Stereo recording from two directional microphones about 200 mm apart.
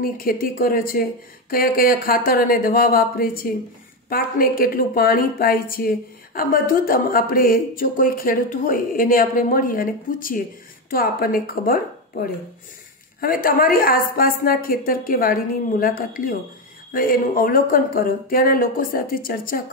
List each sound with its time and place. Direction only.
0.0 s a woman's voice: 45° left (ahead or behind)